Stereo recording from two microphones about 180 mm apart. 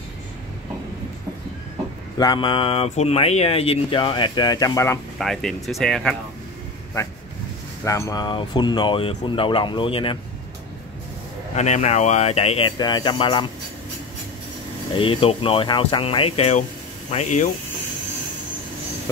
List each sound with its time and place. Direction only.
2.1 s speech: 25° left (ahead or behind)
5.2 s speech: centre (ahead or behind)
7.8 s speech: 15° left (ahead or behind)
11.5 s speech: 40° left (ahead or behind)
15.0 s speech: 30° left (ahead or behind)